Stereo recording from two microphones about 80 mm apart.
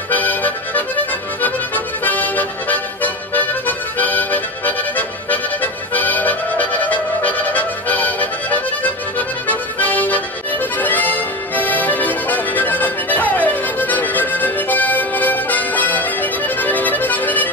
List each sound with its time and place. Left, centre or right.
0.1 s music: left
2.0 s music: left